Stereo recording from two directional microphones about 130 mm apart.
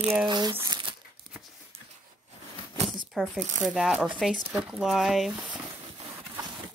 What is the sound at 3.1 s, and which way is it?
Speech, centre (ahead or behind).